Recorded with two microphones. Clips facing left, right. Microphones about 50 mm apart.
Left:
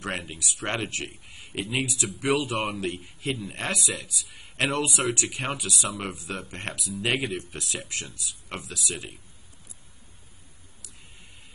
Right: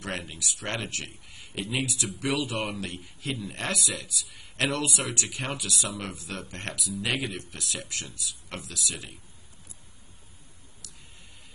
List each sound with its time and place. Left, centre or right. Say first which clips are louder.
0.0 s a man's voice: left 2 dB; left